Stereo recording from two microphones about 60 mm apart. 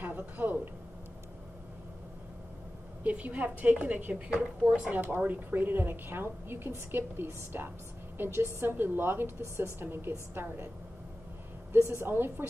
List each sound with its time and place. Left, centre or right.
0.0 s a sound: right
3.0 s a woman's voice: right
4.9 s a woman's voice: right
11.7 s a woman's voice: right